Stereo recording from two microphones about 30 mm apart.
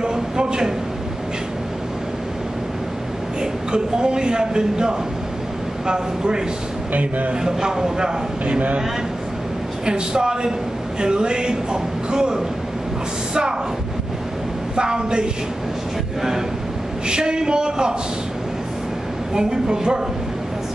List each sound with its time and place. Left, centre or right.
0.0 s a sound: right
3.7 s speech: right
6.9 s speech: right
7.4 s speech: right
9.8 s speech: right
14.8 s speech: right
16.2 s speech: centre
17.1 s speech: right
19.3 s speech: right